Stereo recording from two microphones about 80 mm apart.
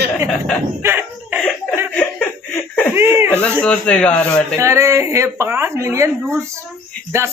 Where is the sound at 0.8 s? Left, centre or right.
Right.